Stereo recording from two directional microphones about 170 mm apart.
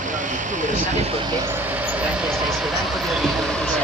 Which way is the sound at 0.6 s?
45° right (ahead or behind).